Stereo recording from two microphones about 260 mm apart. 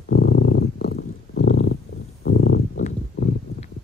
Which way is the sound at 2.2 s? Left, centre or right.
Left.